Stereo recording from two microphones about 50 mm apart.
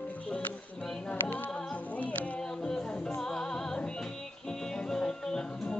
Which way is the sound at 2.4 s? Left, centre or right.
Centre.